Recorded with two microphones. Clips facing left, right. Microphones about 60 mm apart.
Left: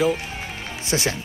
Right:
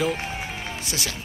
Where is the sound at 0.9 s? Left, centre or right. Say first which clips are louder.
Left 10 dB; left.